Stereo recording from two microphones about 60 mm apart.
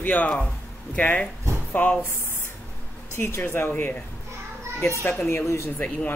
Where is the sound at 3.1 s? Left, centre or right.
Left.